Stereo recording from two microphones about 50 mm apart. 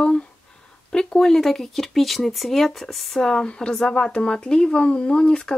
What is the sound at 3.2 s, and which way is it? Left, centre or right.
Speech, centre.